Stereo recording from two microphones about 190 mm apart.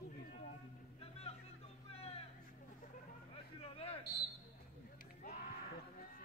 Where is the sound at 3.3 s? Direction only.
30° left (ahead or behind).